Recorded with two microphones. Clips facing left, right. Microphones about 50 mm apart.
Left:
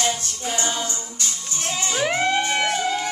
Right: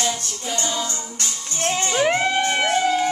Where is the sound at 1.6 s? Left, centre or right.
Right.